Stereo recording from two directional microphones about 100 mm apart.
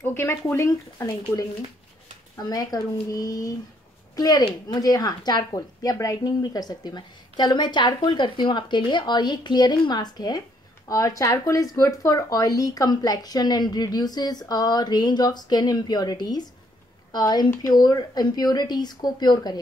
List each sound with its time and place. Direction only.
0.0 s a woman's voice: 25° left (ahead or behind); by 19.6 s 45° left (ahead or behind)